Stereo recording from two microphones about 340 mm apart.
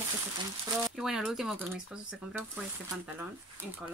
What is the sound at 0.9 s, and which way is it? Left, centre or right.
Speech, centre.